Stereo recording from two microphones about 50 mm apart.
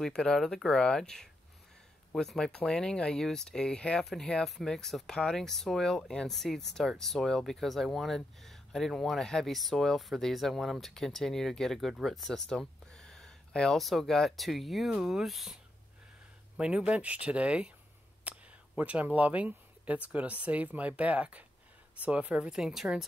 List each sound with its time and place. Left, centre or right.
0.0 s speech: centre
4.0 s speech: centre
16.5 s speech: right
18.2 s a sound: right
18.8 s speech: right
22.5 s speech: centre